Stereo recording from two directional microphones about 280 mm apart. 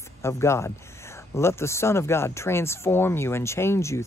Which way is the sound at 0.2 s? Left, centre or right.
Centre.